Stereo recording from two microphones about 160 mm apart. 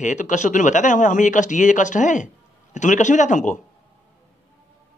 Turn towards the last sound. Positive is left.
turn(degrees=50)  # may be behind; listen again after turning